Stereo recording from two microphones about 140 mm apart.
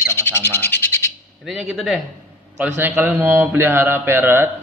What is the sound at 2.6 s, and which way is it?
A man's voice, 15° right (ahead or behind).